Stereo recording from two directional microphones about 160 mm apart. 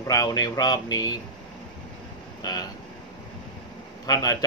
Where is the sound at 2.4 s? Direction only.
25° left (ahead or behind).